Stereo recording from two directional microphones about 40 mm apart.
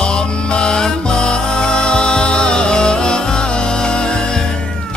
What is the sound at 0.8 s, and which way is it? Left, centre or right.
Music, left.